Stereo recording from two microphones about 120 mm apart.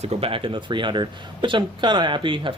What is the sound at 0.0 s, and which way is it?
Speech, 55° right (ahead or behind).